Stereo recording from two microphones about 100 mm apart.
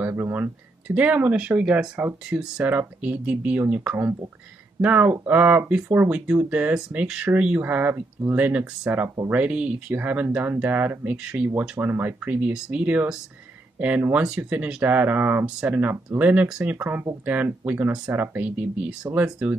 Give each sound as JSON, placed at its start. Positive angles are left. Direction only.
{"t": 0.0, "sound": "speech", "side_deg": -20}
{"t": 16.7, "sound": "speech", "side_deg": -20}